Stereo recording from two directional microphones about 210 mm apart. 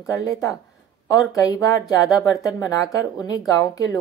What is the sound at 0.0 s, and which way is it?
Speech, 15° left (ahead or behind).